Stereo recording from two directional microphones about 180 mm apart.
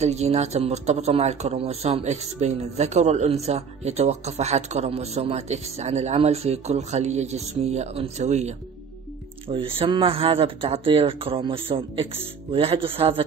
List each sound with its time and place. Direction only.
0.0 s speech: 35° right (ahead or behind)